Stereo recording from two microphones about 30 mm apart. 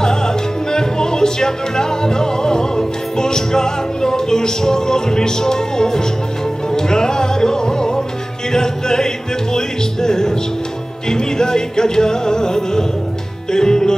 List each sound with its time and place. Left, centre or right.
0.0 s music: left